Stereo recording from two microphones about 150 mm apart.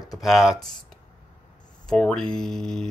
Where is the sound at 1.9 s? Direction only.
5° left (ahead or behind).